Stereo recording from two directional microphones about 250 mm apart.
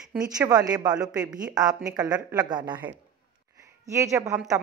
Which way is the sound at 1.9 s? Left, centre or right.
Centre.